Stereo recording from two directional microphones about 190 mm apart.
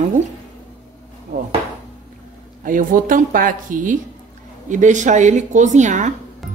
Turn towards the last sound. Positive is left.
turn(degrees=-40)  # may be behind; listen again after turning